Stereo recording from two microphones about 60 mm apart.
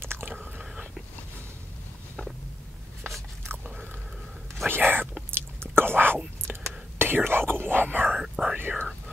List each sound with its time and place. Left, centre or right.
0.0 s chewing: right
4.6 s whispering: right
8.2 s whispering: centre
8.5 s whispering: right